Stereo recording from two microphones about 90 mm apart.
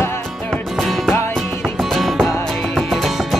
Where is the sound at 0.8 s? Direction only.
Centre (ahead or behind).